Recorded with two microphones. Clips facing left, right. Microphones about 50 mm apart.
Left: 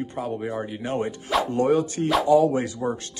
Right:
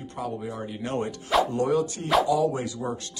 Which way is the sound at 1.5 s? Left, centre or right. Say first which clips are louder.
Left 3 dB; left.